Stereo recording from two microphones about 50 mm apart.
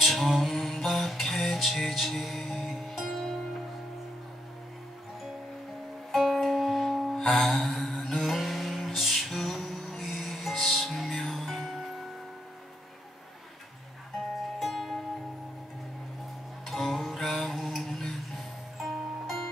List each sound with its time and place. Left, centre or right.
0.0 s music: centre
6.1 s music: centre
14.6 s music: centre
16.6 s music: centre